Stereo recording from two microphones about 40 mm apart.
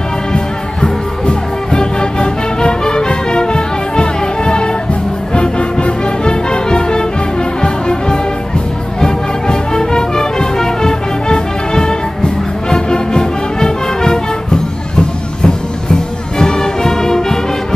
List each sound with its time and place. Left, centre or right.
0.8 s music: left
7.6 s brass instrument: left
9.0 s music: centre